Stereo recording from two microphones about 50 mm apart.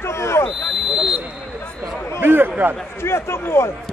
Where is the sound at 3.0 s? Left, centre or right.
Left.